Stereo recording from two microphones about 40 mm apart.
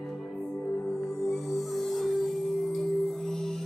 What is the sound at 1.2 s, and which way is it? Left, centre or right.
Music, centre.